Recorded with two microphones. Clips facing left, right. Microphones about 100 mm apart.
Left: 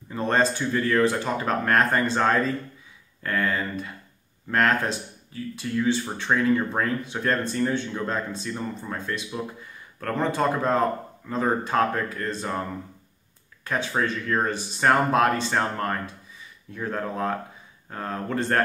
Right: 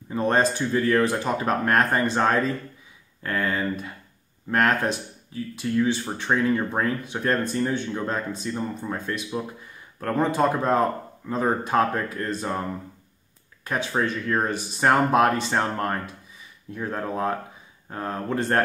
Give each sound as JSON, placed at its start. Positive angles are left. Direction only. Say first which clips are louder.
{"t": 0.1, "sound": "speech", "louder": "right 1 dB", "side_deg": -15}
{"t": 4.5, "sound": "speech", "louder": "right 1 dB", "side_deg": -15}
{"t": 13.7, "sound": "speech", "louder": "right 1 dB", "side_deg": -15}